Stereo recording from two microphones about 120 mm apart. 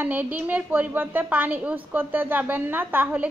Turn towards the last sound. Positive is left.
turn(degrees=-15)  # may be behind; listen again after turning